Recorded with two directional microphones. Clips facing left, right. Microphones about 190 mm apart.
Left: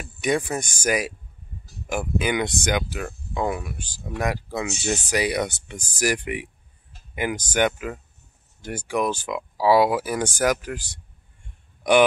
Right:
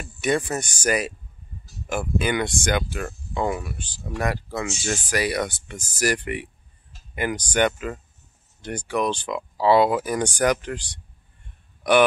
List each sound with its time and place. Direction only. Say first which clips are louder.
0.2 s speech: even; 10° left (ahead or behind)